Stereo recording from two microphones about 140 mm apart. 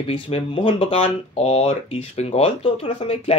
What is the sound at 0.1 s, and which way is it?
Speech, 40° left (ahead or behind).